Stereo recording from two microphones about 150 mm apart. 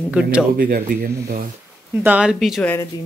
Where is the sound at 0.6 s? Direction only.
65° right (ahead or behind); by 1.5 s 85° right.